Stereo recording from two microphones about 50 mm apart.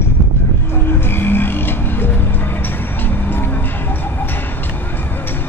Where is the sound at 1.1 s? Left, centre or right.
Left.